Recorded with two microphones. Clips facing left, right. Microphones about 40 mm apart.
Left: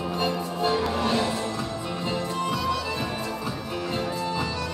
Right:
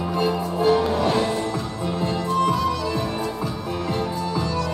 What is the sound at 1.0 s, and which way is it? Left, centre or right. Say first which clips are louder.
Music: right 3 dB; centre.